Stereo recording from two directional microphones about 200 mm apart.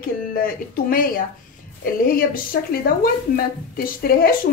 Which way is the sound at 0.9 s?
45° left (ahead or behind).